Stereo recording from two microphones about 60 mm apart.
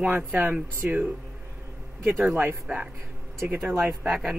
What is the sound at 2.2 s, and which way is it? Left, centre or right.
Speech, right.